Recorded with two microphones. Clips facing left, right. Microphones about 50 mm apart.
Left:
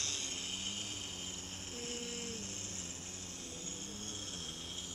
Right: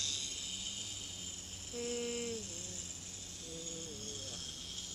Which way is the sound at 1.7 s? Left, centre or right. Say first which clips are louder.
Right 6 dB; left.